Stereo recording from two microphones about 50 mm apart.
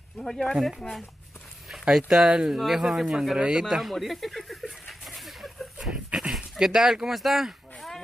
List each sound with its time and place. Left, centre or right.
0.2 s speech: centre
0.6 s speech: centre
3.6 s speech: centre
5.0 s a sound: centre
6.3 s speech: centre